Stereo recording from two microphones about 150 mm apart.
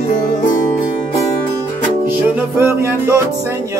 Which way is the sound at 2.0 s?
15° right (ahead or behind).